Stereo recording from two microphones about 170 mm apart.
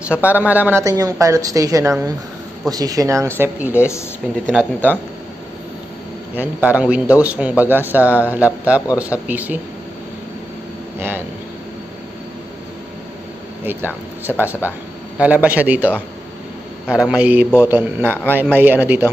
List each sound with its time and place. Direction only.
0.1 s a man's voice: 10° right (ahead or behind)
3.7 s a woman's voice: 15° left (ahead or behind)
4.5 s speech: 5° left (ahead or behind)
6.3 s a man's voice: 10° right (ahead or behind)
11.0 s a man's voice: 15° right (ahead or behind)
13.7 s a man's voice: 10° right (ahead or behind)